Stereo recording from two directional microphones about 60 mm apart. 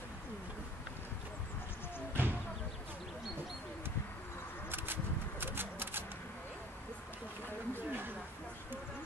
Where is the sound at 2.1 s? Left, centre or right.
Right.